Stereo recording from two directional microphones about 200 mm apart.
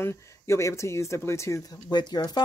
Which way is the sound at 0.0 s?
15° left (ahead or behind).